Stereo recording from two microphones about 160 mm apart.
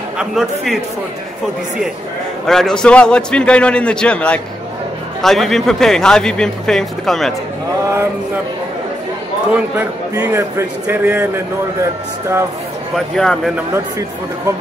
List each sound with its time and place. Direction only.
0.2 s speech: centre (ahead or behind)
2.4 s speech: 5° left (ahead or behind)
9.8 s a man's voice: 15° right (ahead or behind)
12.9 s speech: 5° left (ahead or behind)